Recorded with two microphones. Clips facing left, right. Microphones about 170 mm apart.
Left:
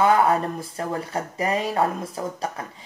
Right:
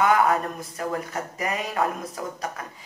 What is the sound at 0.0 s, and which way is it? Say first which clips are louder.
Speech: left 2 dB; 30° left (ahead or behind).